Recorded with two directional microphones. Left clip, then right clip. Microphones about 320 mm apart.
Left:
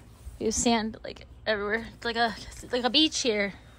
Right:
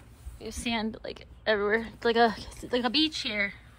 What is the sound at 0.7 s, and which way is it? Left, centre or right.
Speech, centre.